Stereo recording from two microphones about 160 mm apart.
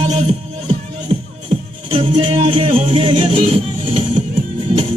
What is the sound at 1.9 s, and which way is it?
Music, 35° right (ahead or behind).